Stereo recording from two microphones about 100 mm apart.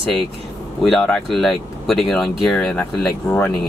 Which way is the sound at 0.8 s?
5° left (ahead or behind).